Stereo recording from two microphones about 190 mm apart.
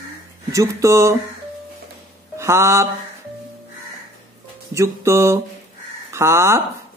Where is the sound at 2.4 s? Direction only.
15° right (ahead or behind).